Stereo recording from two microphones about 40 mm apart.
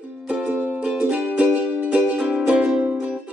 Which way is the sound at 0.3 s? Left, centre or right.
Right.